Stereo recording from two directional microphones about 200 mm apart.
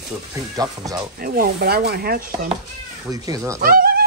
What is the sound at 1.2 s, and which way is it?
Speech, 45° right (ahead or behind).